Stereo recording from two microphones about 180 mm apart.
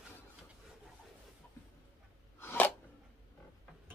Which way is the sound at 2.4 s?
15° left (ahead or behind).